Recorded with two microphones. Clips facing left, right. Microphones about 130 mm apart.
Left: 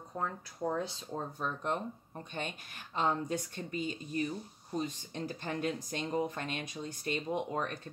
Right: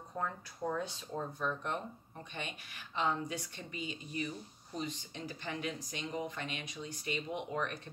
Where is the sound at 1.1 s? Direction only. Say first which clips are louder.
Right 1 dB; 35° left (ahead or behind).